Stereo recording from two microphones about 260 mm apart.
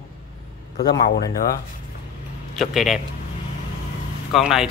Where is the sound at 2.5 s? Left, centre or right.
Centre.